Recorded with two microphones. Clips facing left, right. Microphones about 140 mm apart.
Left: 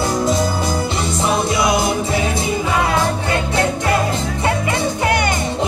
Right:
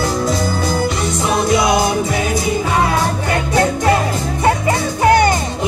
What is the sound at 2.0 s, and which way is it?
Music, 25° left (ahead or behind).